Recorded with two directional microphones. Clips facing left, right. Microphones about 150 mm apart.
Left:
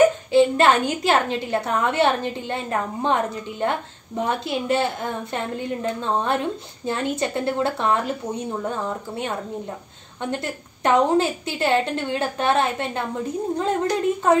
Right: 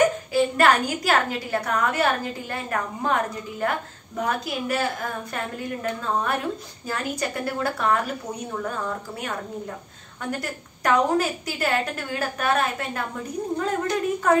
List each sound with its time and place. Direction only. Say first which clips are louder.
0.3 s a woman's voice: left 3 dB; 25° left (ahead or behind)